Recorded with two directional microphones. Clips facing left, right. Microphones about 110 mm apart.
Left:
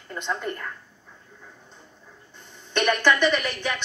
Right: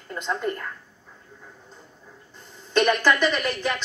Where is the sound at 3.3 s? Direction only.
40° right (ahead or behind).